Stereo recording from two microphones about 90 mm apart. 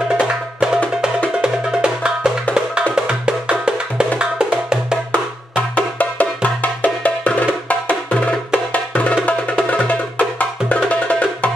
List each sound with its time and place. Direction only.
1.4 s music: 10° right (ahead or behind)
5.1 s music: 15° left (ahead or behind)